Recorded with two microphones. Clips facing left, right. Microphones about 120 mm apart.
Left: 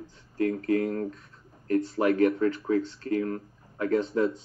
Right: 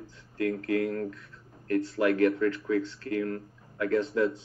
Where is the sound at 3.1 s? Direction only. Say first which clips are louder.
Left 2 dB; 35° left (ahead or behind).